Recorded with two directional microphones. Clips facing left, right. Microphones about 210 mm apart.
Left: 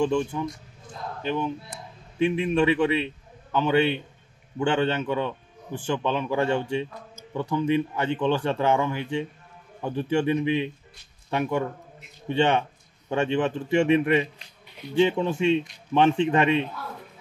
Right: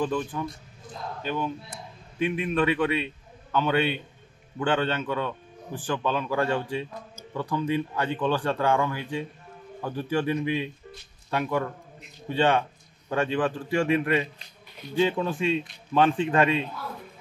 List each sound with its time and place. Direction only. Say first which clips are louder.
1.2 s a man's voice: left 3 dB; 20° left (ahead or behind)
2.5 s a man's voice: left 1 dB; 15° left (ahead or behind)